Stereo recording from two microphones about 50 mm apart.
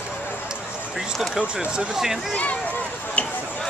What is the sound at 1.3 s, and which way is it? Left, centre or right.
Speech, right.